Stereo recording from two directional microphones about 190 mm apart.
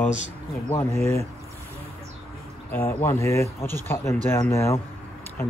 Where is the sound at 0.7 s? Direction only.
15° left (ahead or behind).